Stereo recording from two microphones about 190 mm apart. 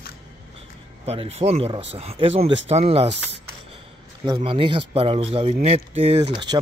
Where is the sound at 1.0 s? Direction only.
30° right (ahead or behind).